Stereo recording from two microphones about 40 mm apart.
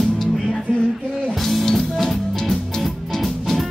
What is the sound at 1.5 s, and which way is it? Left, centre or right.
Music, centre.